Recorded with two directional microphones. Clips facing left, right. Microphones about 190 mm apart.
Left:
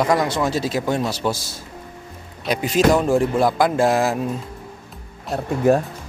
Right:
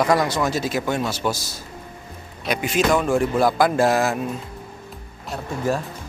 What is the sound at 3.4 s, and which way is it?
Speech, 25° left (ahead or behind).